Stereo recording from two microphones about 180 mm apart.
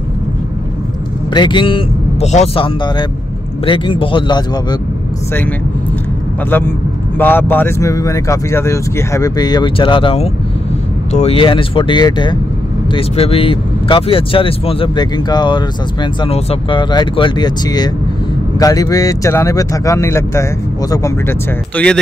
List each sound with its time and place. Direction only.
1.3 s speech: 25° left (ahead or behind)
7.2 s speech: 10° left (ahead or behind)